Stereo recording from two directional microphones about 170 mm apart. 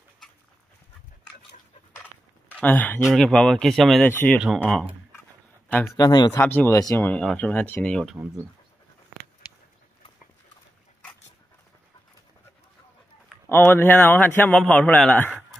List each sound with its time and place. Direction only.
2.5 s speech: 10° left (ahead or behind)
4.1 s a man's voice: 10° left (ahead or behind)
5.9 s speech: 25° left (ahead or behind)
6.4 s a man's voice: 10° left (ahead or behind)
13.5 s a man's voice: 15° left (ahead or behind)